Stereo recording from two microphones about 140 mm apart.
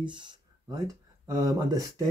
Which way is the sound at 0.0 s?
35° right (ahead or behind).